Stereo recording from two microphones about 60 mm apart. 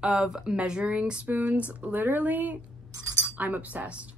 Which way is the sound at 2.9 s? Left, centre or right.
Right.